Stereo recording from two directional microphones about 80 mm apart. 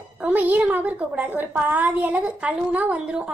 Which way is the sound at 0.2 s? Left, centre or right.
Centre.